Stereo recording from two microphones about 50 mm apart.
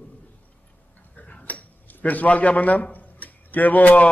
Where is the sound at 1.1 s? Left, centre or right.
Left.